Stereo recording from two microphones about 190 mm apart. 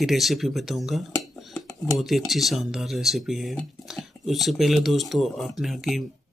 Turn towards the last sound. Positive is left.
turn(degrees=0)  # may be behind; listen again after turning